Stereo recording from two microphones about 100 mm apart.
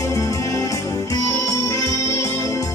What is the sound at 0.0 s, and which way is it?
Music, 35° left (ahead or behind).